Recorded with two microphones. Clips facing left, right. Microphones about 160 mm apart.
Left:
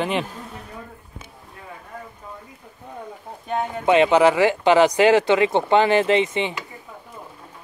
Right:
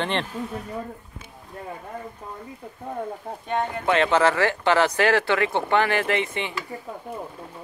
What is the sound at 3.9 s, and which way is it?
Speech, 15° left (ahead or behind).